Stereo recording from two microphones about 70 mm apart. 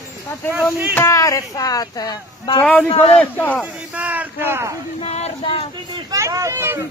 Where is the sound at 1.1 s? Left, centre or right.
Left.